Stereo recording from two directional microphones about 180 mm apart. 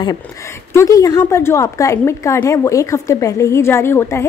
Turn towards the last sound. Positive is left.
turn(degrees=15)  # may be behind; listen again after turning